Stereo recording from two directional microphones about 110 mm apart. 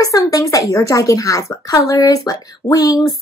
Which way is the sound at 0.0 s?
30° left (ahead or behind).